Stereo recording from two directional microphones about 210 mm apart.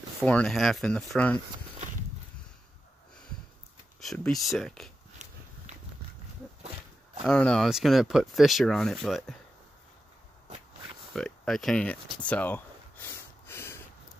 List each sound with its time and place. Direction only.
0.2 s speech: 5° left (ahead or behind)
4.0 s speech: centre (ahead or behind)
5.2 s walk: 35° right (ahead or behind)
7.2 s speech: 5° left (ahead or behind)
11.1 s a sound: centre (ahead or behind)